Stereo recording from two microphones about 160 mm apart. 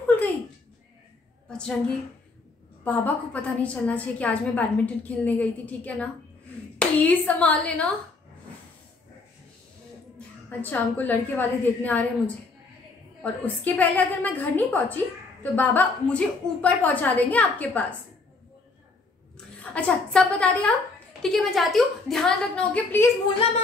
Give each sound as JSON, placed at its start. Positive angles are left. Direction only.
{"t": 0.0, "sound": "a sound", "side_deg": 10}
{"t": 1.6, "sound": "a woman's voice", "side_deg": 5}
{"t": 10.6, "sound": "a woman's voice", "side_deg": 10}
{"t": 13.2, "sound": "a woman's voice", "side_deg": 10}
{"t": 19.3, "sound": "a woman's voice", "side_deg": 10}